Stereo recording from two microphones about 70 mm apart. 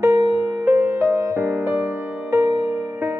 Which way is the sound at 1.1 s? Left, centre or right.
Right.